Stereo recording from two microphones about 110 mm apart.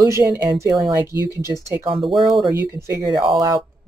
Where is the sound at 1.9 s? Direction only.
50° right (ahead or behind).